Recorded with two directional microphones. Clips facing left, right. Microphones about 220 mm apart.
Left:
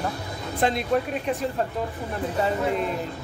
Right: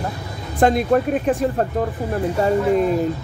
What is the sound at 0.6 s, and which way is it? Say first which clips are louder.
Speech: right 7 dB; 50° right (ahead or behind).